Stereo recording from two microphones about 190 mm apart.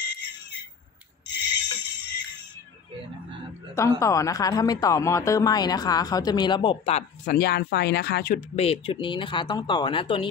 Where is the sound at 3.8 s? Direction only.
15° left (ahead or behind); by 7.3 s 35° left (ahead or behind).